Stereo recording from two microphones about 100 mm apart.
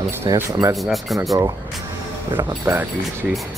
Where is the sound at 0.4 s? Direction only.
25° right (ahead or behind).